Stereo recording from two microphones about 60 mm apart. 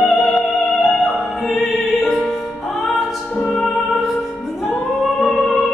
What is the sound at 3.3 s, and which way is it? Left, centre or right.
Music, centre.